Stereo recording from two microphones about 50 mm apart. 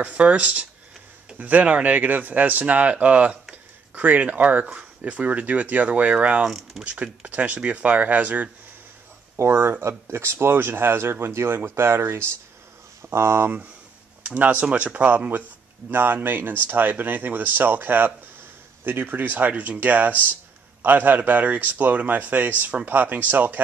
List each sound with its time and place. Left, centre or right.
0.0 s speech: right
6.4 s speech: centre
6.8 s speech: right
9.4 s speech: right
14.2 s speech: right
15.1 s speech: right